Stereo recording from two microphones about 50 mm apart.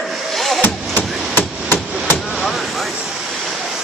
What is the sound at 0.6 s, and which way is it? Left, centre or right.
Hammer, left.